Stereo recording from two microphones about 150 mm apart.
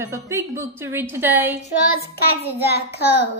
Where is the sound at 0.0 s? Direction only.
20° right (ahead or behind).